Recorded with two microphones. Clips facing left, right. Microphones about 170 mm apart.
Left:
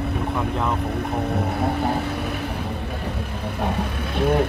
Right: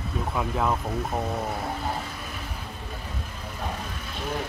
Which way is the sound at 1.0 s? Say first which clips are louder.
Left 4 dB; 65° left (ahead or behind).